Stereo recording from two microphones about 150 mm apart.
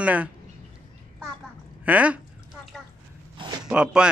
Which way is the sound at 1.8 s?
10° right (ahead or behind).